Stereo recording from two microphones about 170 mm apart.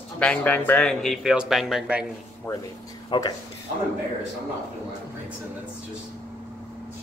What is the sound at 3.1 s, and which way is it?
Speech, 25° left (ahead or behind).